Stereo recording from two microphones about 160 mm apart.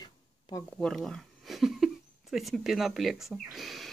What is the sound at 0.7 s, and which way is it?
Speech, 5° left (ahead or behind).